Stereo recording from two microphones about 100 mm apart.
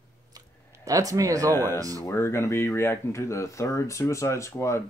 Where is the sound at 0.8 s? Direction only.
35° right (ahead or behind).